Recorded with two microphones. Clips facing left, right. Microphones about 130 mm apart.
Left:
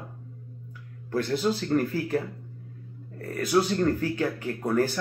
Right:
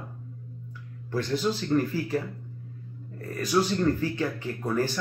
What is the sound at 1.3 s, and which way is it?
Speech, 5° left (ahead or behind).